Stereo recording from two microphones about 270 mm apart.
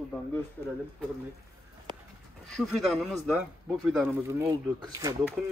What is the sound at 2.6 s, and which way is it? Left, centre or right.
Speech, centre.